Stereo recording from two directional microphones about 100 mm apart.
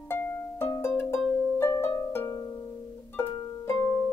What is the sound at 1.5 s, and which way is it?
Harp, 25° left (ahead or behind).